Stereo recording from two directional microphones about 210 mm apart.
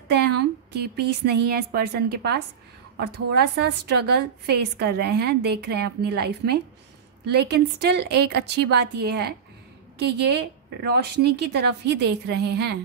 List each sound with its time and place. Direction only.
0.1 s a woman's voice: 50° right (ahead or behind)